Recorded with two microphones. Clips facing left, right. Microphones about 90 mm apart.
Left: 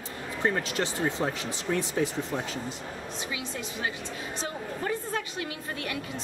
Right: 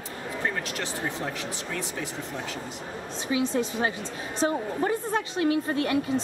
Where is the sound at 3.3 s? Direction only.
35° right (ahead or behind).